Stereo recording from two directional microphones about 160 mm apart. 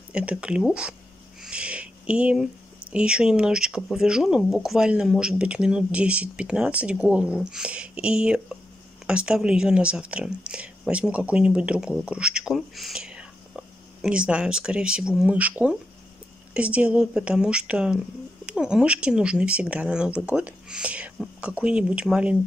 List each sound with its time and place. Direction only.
0.1 s speech: 5° right (ahead or behind)
1.4 s a sound: 5° right (ahead or behind)
2.9 s speech: 5° right (ahead or behind)